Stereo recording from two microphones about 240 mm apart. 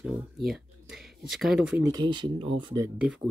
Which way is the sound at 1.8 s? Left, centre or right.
Centre.